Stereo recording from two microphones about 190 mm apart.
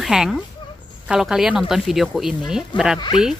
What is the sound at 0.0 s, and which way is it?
Speech, centre (ahead or behind).